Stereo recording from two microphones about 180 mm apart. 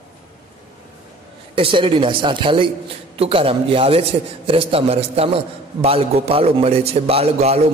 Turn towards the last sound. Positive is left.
turn(degrees=-35)  # may be behind; listen again after turning